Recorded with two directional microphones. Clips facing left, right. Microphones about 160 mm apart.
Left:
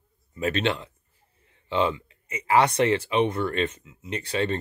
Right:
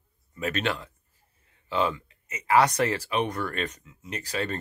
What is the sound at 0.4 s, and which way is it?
Speech, 30° left (ahead or behind).